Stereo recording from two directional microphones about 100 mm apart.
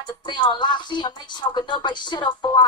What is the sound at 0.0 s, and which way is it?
Music, 50° left (ahead or behind).